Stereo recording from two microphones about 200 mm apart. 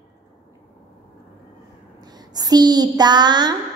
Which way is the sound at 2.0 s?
20° right (ahead or behind).